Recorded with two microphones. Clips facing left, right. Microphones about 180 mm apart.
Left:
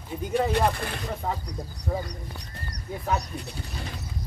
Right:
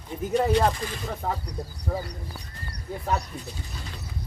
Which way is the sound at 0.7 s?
65° left (ahead or behind).